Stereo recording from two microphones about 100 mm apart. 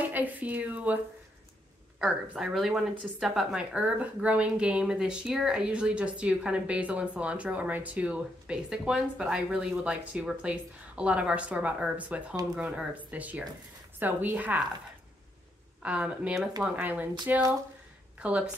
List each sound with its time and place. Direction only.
0.0 s speech: 15° right (ahead or behind)
2.0 s speech: 5° right (ahead or behind)
3.7 s speech: 15° right (ahead or behind)
15.8 s speech: 10° right (ahead or behind)